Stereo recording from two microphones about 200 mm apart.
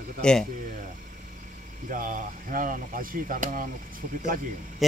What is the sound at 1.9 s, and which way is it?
Speech, 45° right (ahead or behind).